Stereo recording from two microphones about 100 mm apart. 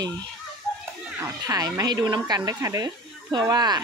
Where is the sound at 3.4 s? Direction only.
40° right (ahead or behind).